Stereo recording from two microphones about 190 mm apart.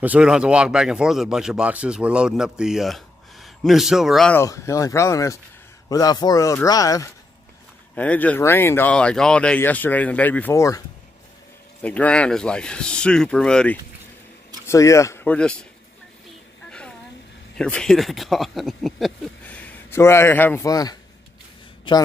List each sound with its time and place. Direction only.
0.0 s speech: 5° right (ahead or behind)
4.4 s speech: 15° left (ahead or behind)
7.9 s speech: 5° left (ahead or behind)
11.8 s speech: 5° left (ahead or behind)
14.7 s speech: 15° left (ahead or behind)
17.6 s speech: 5° left (ahead or behind)